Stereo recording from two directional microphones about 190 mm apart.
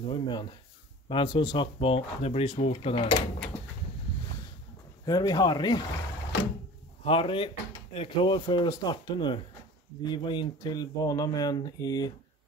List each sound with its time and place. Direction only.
0.0 s speech: 25° left (ahead or behind)
5.0 s speech: 20° left (ahead or behind)
7.1 s speech: 30° left (ahead or behind)